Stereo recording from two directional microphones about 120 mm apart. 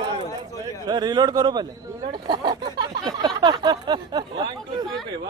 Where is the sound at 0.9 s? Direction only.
35° right (ahead or behind).